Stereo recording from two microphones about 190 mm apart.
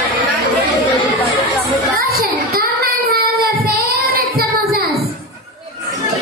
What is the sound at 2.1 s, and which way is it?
Child singing, 50° right (ahead or behind).